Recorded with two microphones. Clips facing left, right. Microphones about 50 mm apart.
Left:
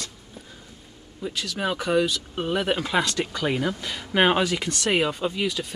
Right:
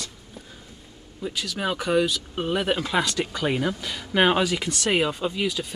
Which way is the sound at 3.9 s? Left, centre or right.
Centre.